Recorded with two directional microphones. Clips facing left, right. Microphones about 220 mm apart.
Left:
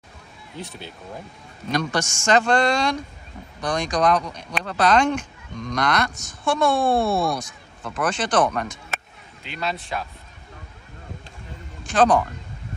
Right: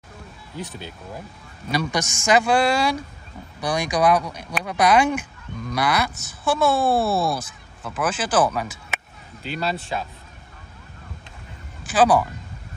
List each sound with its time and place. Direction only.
0.7 s speech: 15° right (ahead or behind)
9.5 s a man's voice: 35° right (ahead or behind)
11.8 s speech: 5° right (ahead or behind)